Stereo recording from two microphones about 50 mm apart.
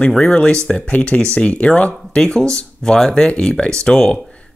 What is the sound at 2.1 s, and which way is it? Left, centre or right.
Speech, centre.